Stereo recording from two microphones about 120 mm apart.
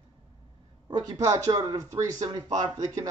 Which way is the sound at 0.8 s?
35° right (ahead or behind).